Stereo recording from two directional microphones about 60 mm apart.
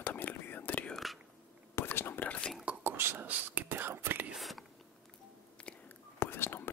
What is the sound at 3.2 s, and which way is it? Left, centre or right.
Whispering, right.